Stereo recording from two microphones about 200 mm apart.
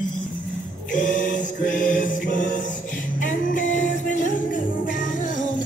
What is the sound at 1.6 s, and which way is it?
Music, 40° left (ahead or behind).